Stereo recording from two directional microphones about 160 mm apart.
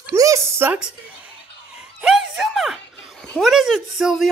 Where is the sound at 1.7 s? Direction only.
5° right (ahead or behind).